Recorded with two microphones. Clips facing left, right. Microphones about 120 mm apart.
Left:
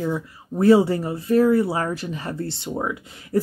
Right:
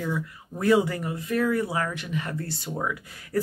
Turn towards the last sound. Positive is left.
turn(degrees=25)  # may be behind; listen again after turning